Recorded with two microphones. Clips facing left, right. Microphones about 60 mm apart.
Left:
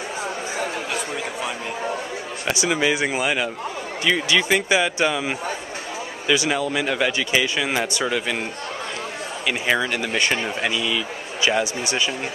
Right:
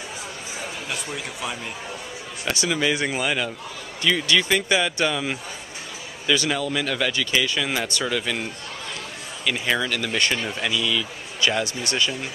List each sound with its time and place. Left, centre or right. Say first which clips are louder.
2.6 s speech: left 2 dB; centre
9.5 s speech: left 2 dB; centre